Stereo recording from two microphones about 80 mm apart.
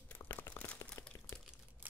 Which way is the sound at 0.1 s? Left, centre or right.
Left.